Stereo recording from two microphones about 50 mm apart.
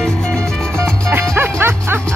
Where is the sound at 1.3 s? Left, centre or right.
Right.